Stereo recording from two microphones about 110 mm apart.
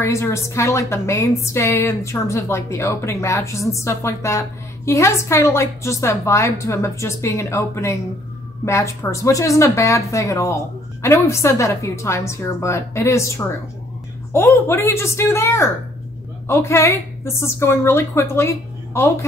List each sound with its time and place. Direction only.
0.0 s a woman's voice: 25° left (ahead or behind)